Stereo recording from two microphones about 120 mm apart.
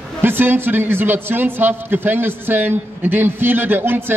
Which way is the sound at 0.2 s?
15° right (ahead or behind).